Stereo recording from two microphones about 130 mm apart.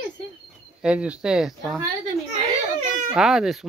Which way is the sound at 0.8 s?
10° right (ahead or behind).